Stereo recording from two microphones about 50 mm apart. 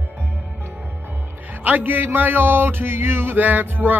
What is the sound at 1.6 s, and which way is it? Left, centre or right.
Music, right.